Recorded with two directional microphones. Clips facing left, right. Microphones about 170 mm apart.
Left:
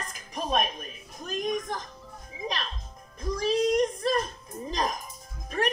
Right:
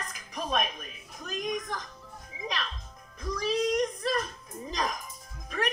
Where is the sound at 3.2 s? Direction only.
30° left (ahead or behind).